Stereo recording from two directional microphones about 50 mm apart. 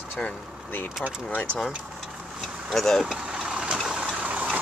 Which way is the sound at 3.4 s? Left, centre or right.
Centre.